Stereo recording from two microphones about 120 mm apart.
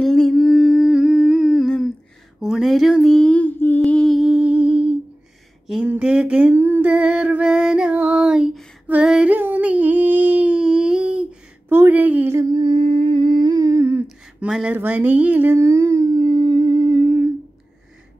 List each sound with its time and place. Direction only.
0.0 s humming: 5° left (ahead or behind)
2.4 s speech: 5° right (ahead or behind); by 3.8 s 15° left (ahead or behind)
3.8 s humming: 5° left (ahead or behind)
11.7 s a sound: 15° right (ahead or behind)
12.4 s humming: 40° right (ahead or behind); by 14.0 s 20° right (ahead or behind)
14.0 s a sound: 5° right (ahead or behind); by 17.3 s 20° right (ahead or behind)